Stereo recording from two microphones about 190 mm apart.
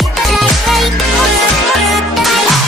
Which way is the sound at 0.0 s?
Centre (ahead or behind).